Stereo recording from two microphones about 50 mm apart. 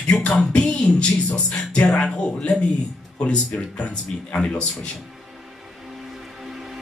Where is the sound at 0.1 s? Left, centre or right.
Centre.